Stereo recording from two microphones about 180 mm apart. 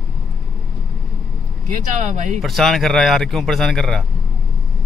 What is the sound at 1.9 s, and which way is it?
Speech, 40° right (ahead or behind).